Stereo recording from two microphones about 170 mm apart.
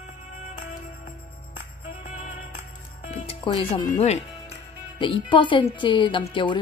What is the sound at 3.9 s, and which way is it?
Speech, 40° left (ahead or behind).